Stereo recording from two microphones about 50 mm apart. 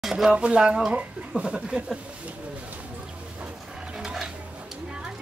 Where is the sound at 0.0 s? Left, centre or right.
Centre.